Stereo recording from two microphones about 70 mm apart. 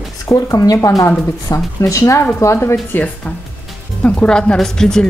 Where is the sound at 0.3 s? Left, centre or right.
Left.